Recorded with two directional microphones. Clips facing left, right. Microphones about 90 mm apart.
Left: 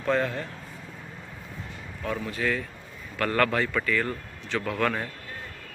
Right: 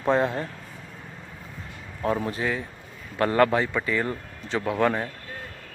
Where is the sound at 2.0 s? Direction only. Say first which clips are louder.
Right 5 dB; 35° right (ahead or behind).